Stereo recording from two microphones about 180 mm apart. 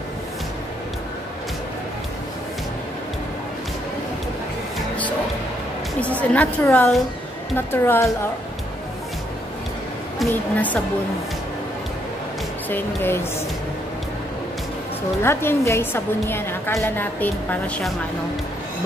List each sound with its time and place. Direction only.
5.9 s a woman's voice: 5° left (ahead or behind)
10.1 s a woman's voice: 10° left (ahead or behind)
12.6 s a woman's voice: 10° left (ahead or behind)
15.2 s a woman's voice: 15° left (ahead or behind)